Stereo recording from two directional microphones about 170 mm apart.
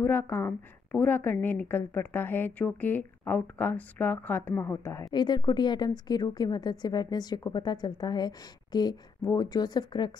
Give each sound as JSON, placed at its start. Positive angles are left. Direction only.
{"t": 0.0, "sound": "a woman's voice", "side_deg": 15}